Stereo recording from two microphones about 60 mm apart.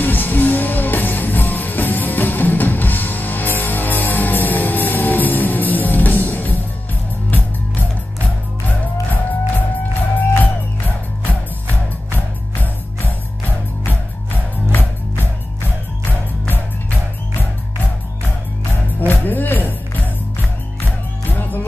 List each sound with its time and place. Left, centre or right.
0.0 s music: left
10.1 s music: left
13.8 s music: left
16.4 s music: left
18.9 s music: left
21.3 s music: left